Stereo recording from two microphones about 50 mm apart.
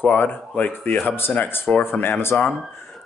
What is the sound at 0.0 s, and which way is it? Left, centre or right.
Speech, left.